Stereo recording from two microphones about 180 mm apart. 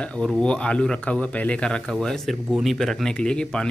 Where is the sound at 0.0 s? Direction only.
5° left (ahead or behind).